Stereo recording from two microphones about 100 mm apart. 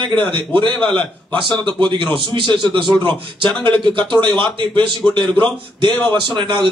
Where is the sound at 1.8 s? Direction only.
55° right (ahead or behind).